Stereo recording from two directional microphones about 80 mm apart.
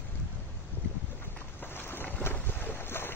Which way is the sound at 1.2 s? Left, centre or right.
Left.